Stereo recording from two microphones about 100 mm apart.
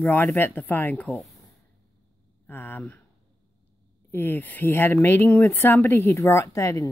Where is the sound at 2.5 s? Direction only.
20° left (ahead or behind).